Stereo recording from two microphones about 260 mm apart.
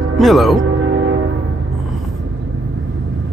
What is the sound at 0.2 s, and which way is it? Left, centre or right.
Speech, centre.